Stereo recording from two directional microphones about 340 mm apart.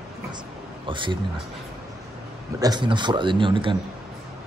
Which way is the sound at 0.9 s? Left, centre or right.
Centre.